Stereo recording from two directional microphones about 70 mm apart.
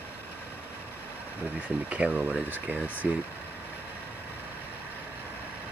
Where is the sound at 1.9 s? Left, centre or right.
Centre.